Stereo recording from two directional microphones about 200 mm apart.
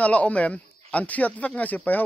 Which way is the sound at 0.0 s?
5° left (ahead or behind).